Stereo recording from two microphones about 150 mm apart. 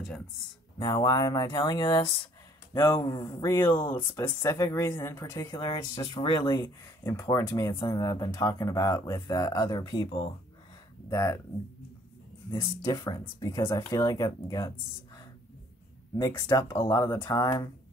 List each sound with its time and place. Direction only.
0.7 s speech: 25° left (ahead or behind)
3.1 s speech: 25° left (ahead or behind)
13.0 s speech: 20° left (ahead or behind)
16.2 s speech: 15° left (ahead or behind)